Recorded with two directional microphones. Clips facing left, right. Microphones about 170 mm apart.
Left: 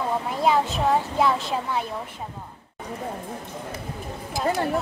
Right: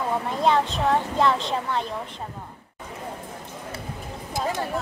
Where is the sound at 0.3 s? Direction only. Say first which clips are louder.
Even; 5° left (ahead or behind).